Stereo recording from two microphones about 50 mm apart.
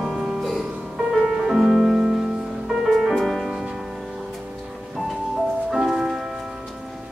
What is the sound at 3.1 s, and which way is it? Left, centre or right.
Music, centre.